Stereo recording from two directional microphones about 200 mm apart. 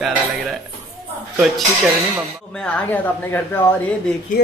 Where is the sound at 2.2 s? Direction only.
5° left (ahead or behind).